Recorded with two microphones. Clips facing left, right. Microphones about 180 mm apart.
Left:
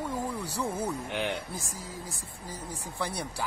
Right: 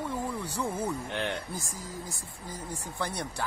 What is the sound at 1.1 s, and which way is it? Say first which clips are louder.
Speech: left 1 dB; 5° left (ahead or behind).